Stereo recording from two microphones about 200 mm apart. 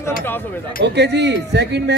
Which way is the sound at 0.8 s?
60° right (ahead or behind).